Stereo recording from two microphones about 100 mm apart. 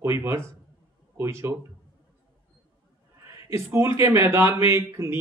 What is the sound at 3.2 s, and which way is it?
Speech, 30° right (ahead or behind).